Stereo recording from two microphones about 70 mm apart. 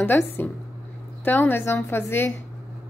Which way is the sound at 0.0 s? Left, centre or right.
Left.